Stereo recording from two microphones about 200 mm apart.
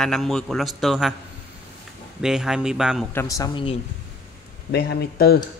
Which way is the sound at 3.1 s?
15° left (ahead or behind).